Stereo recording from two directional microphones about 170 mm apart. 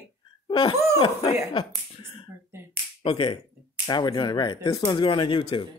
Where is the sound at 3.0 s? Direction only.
30° left (ahead or behind).